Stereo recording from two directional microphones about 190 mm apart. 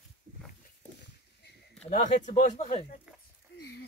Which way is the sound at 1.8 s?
35° left (ahead or behind).